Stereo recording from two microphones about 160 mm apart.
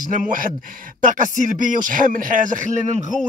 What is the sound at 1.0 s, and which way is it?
Speech, 55° right (ahead or behind).